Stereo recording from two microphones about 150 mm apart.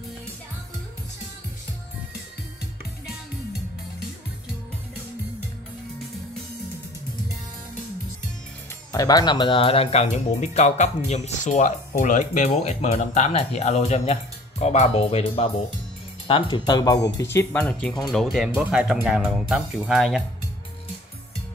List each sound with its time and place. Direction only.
8.9 s speech: 25° left (ahead or behind); by 20.2 s centre (ahead or behind)